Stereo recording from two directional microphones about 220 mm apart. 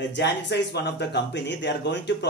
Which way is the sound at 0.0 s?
50° left (ahead or behind).